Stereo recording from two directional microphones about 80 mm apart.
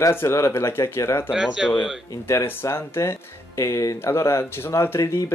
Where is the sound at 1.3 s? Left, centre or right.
Centre.